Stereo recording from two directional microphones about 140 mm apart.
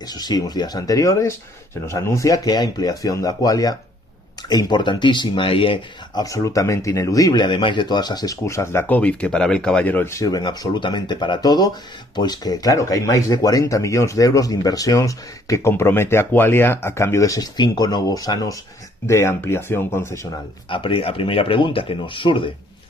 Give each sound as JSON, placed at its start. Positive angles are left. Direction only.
{"t": 0.1, "sound": "speech", "side_deg": 30}
{"t": 6.2, "sound": "speech", "side_deg": 25}
{"t": 20.7, "sound": "speech", "side_deg": 35}